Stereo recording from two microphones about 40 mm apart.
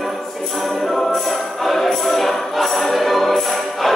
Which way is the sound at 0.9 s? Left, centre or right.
Centre.